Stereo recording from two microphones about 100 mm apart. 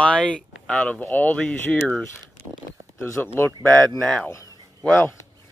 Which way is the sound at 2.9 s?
20° left (ahead or behind).